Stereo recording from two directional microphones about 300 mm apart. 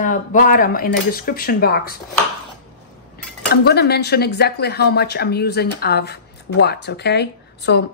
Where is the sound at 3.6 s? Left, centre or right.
Left.